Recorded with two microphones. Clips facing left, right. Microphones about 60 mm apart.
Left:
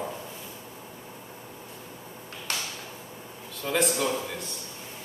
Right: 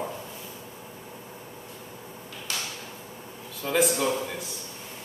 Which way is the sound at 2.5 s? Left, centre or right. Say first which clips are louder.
Left 1 dB; left.